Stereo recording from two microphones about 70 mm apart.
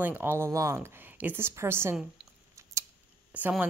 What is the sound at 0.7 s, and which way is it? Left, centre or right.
Speech, right.